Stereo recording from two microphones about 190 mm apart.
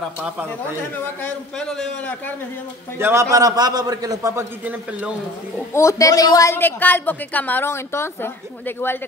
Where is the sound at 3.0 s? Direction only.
15° right (ahead or behind).